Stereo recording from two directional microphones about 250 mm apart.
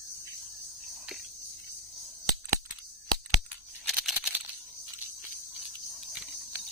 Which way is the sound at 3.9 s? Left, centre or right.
Centre.